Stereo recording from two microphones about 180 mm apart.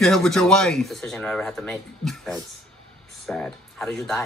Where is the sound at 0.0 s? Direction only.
Centre (ahead or behind).